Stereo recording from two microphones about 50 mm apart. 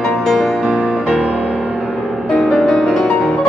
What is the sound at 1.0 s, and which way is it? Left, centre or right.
Music, right.